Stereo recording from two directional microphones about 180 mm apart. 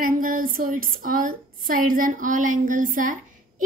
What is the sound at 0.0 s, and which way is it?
A woman's voice, 50° right (ahead or behind).